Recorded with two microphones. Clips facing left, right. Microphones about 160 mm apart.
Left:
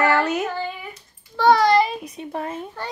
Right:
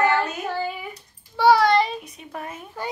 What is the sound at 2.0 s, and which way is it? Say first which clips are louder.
Speech: left 6 dB; 30° left (ahead or behind).